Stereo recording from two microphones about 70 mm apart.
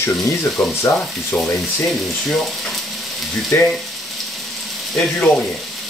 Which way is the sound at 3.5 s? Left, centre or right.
Left.